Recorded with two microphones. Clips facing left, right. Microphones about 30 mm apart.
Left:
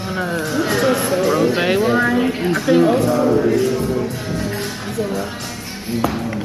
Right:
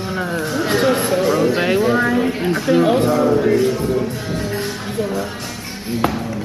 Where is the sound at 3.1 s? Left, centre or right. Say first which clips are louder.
Even; centre.